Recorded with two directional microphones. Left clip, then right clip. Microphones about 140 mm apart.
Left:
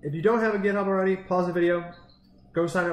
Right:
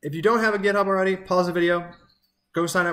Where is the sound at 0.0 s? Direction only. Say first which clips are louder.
Right 3 dB; 20° right (ahead or behind).